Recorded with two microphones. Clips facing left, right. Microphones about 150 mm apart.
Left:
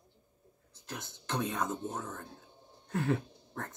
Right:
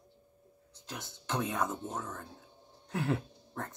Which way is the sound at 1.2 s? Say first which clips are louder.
Even; 10° right (ahead or behind).